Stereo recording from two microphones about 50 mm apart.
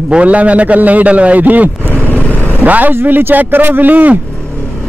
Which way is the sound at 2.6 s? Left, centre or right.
Right.